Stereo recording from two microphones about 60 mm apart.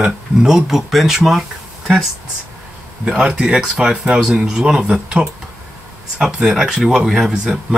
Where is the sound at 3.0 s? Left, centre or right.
Centre.